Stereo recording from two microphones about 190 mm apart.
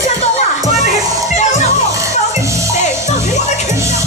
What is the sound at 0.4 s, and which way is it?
Music, 35° left (ahead or behind).